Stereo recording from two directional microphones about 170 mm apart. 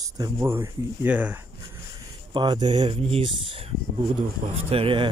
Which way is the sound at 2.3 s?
25° right (ahead or behind).